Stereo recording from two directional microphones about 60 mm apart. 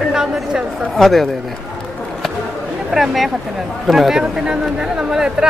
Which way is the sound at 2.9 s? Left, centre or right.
Centre.